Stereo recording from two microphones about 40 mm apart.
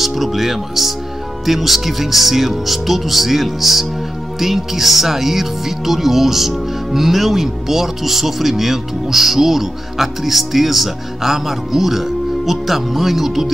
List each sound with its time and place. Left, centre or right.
0.0 s speech: centre